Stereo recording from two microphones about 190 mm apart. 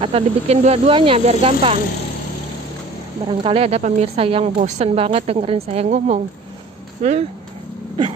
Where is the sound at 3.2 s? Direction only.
30° right (ahead or behind).